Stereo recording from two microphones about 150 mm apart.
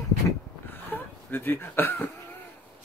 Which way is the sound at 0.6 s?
15° left (ahead or behind).